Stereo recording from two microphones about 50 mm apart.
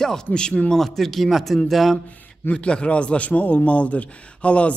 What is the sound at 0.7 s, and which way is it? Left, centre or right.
A man's voice, centre.